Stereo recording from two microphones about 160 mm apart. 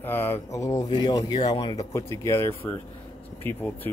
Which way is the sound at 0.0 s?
15° left (ahead or behind).